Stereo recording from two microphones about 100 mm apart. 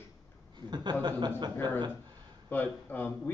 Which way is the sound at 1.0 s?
45° right (ahead or behind).